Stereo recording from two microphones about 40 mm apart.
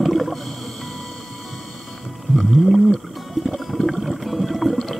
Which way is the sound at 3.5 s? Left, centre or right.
Centre.